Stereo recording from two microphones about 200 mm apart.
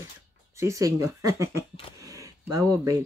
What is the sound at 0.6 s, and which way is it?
Speech, 15° right (ahead or behind).